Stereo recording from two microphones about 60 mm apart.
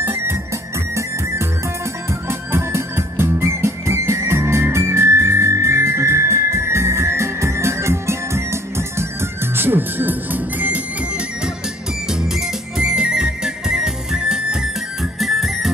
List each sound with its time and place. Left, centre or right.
0.0 s music: right
9.6 s music: right
12.1 s music: centre